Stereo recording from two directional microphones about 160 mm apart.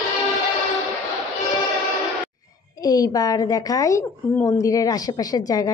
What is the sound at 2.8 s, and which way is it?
A woman's voice, 20° left (ahead or behind).